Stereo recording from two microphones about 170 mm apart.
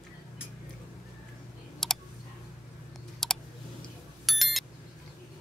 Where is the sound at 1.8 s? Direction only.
Centre (ahead or behind).